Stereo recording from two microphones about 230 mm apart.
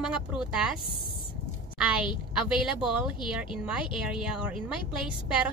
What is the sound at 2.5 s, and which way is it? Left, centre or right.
Speech, centre.